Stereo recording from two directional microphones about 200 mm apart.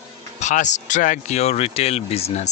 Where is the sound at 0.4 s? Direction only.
35° left (ahead or behind).